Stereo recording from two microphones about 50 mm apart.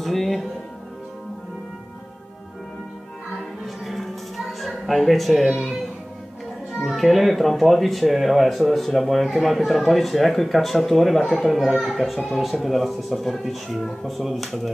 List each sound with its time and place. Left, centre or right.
0.0 s music: centre
3.6 s music: centre
6.9 s speech: centre